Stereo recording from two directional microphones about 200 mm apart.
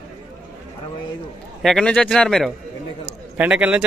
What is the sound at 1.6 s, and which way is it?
Speech, 5° left (ahead or behind).